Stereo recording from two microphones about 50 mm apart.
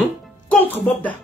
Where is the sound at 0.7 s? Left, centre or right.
Left.